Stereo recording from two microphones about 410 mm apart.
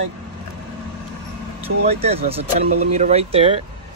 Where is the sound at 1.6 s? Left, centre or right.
Centre.